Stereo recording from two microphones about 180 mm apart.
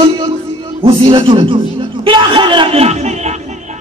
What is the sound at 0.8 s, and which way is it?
A man's voice, 30° right (ahead or behind).